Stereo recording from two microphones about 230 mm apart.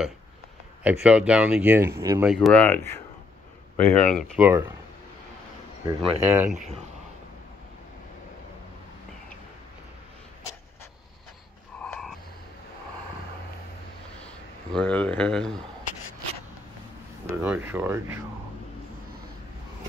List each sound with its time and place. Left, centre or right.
0.8 s speech: centre
2.4 s speech: centre
4.4 s speech: centre
5.9 s speech: centre
11.8 s a sound: centre
14.8 s speech: centre
17.3 s speech: centre